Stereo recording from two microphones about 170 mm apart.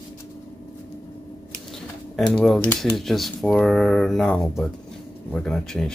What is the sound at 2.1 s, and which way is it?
Speech, 5° left (ahead or behind).